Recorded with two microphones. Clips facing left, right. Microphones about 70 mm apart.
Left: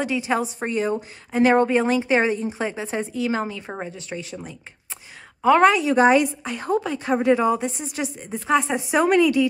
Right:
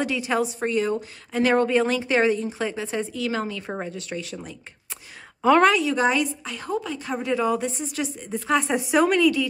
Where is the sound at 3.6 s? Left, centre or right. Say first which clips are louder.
Right 1 dB; centre.